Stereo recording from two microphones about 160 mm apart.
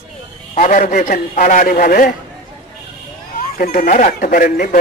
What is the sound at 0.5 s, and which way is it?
Speech, 55° left (ahead or behind).